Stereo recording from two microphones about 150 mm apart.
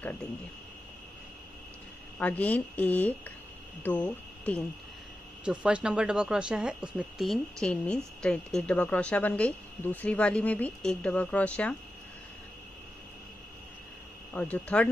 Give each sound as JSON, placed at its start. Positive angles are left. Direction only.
{"t": 0.0, "sound": "a woman's voice", "side_deg": 10}
{"t": 2.1, "sound": "a woman's voice", "side_deg": 10}
{"t": 5.4, "sound": "a woman's voice", "side_deg": -5}
{"t": 14.3, "sound": "a woman's voice", "side_deg": 10}